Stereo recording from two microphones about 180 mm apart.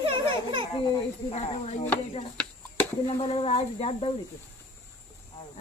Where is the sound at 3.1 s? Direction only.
35° left (ahead or behind).